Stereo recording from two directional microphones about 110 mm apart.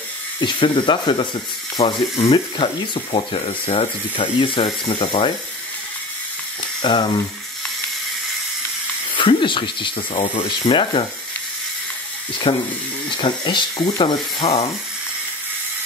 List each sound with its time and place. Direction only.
0.4 s speech: 45° left (ahead or behind)
1.8 s speech: 65° left (ahead or behind)
2.3 s speech: 50° left (ahead or behind)
6.8 s speech: 45° left (ahead or behind)
9.1 s speech: 50° left (ahead or behind)
12.5 s speech: 55° left (ahead or behind)